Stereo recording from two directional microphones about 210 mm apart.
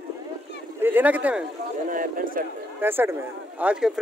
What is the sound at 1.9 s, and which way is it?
Speech, 40° right (ahead or behind).